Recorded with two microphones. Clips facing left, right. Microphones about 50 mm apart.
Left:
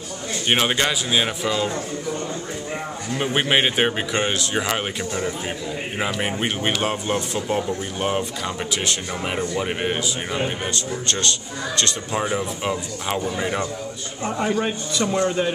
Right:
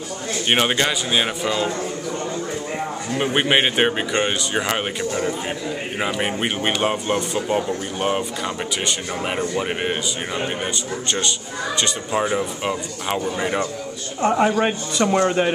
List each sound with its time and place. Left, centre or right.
0.5 s speech: centre
3.2 s a man's voice: centre
14.2 s speech: right